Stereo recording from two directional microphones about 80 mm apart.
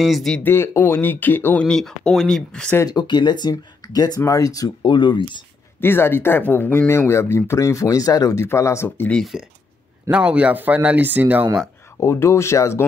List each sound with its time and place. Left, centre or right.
0.0 s speech: centre
0.4 s speech: left
1.6 s speech: centre
2.9 s speech: left
4.8 s speech: left
5.8 s speech: left
9.2 s speech: centre
10.1 s speech: centre
12.0 s speech: left